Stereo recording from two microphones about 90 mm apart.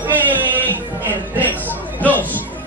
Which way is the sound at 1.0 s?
20° right (ahead or behind).